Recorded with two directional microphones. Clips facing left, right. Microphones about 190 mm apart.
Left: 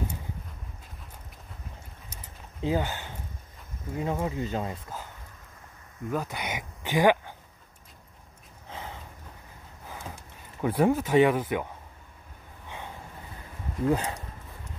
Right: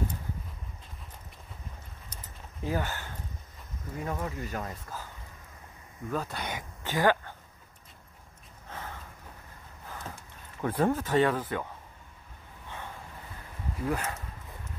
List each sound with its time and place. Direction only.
2.6 s speech: 20° left (ahead or behind)
8.6 s a sound: 15° left (ahead or behind)
13.8 s speech: 25° left (ahead or behind)